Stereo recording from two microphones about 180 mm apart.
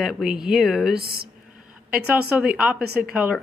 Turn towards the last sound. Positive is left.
turn(degrees=-5)  # may be behind; listen again after turning